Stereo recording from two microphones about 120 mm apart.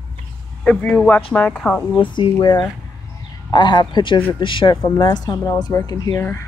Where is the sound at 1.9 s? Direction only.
40° left (ahead or behind).